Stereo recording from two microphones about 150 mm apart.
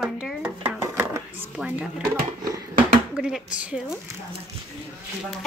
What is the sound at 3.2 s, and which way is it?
Speech, 5° right (ahead or behind).